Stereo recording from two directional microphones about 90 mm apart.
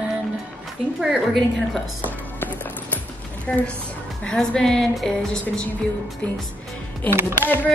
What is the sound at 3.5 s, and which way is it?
A woman's voice, 15° left (ahead or behind).